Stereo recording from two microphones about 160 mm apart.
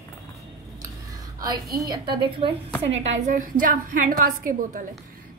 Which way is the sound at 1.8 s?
30° right (ahead or behind).